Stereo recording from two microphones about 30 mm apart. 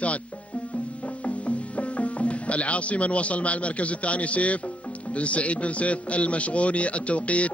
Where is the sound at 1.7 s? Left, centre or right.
Left.